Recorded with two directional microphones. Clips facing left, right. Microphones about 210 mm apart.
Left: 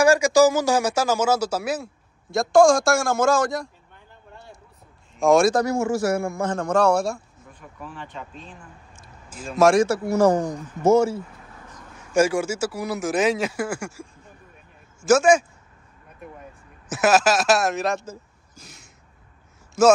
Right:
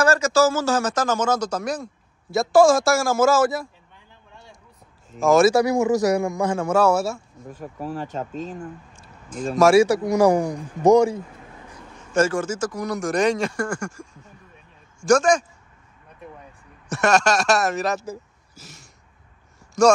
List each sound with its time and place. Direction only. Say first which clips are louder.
0.0 s a man's voice: left 2 dB; 15° left (ahead or behind); by 3.6 s 5° right (ahead or behind)
5.2 s a man's voice: right 1 dB; centre (ahead or behind)
7.4 s speech: right 10 dB; 40° right (ahead or behind)
9.6 s a man's voice: right 2 dB; 5° right (ahead or behind)
10.0 s a man's voice: right 1 dB; 15° right (ahead or behind)
12.0 s a man's voice: left 1 dB; 10° left (ahead or behind)
16.9 s a man's voice: left 1 dB; 5° left (ahead or behind)
18.0 s a sound: right 5 dB; 5° right (ahead or behind)
19.8 s a man's voice: even; 5° left (ahead or behind)